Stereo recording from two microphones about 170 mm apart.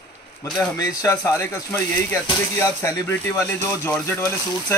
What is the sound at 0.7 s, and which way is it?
Speech, 20° left (ahead or behind).